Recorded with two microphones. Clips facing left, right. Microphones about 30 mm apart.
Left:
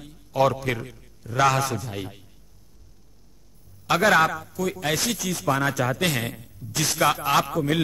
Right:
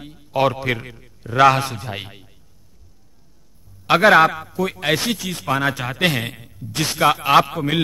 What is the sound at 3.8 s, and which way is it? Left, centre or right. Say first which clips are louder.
A man's voice: right 6 dB; right.